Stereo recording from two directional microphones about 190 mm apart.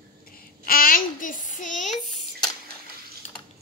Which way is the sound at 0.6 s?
50° left (ahead or behind).